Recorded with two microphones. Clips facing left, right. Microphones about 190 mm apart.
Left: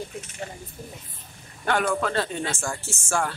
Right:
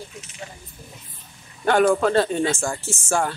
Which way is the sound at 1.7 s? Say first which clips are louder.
Right 7 dB; 35° right (ahead or behind).